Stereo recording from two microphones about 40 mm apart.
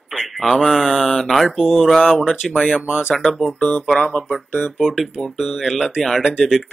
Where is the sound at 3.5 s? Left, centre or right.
Left.